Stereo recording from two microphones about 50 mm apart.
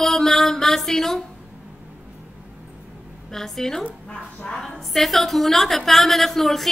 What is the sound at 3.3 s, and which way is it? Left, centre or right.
Speech, centre.